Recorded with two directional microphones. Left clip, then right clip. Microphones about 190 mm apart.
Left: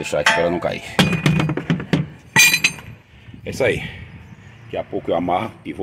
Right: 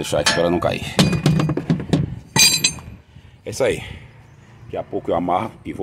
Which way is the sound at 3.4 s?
Centre (ahead or behind).